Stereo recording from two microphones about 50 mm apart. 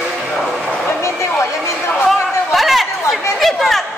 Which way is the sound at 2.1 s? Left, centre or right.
Centre.